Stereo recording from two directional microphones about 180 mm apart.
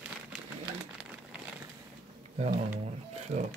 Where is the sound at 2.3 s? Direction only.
40° right (ahead or behind).